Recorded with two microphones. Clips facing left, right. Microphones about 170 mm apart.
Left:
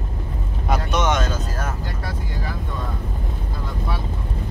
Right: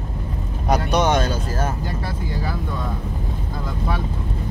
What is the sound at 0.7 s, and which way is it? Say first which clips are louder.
Vehicle: right 3 dB; 35° right (ahead or behind).